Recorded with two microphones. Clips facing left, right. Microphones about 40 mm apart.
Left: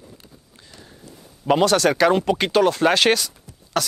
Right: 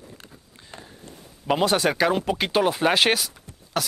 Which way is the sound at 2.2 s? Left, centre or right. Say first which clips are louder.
Left 4 dB; centre.